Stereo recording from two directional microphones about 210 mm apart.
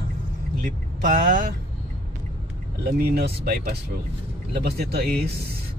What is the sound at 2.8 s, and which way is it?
Speech, 50° right (ahead or behind).